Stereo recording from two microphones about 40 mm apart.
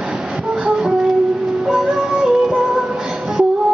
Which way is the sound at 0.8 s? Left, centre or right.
Centre.